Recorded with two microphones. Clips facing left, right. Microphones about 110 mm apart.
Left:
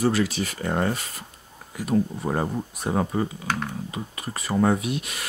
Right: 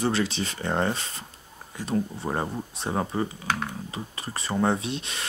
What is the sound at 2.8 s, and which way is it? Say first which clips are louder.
Speech: left 3 dB; 35° left (ahead or behind).